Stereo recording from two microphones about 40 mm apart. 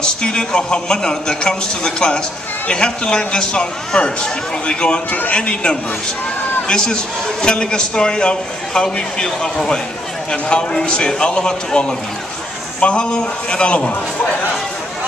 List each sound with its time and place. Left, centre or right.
0.0 s a man's voice: left
10.3 s a man's voice: left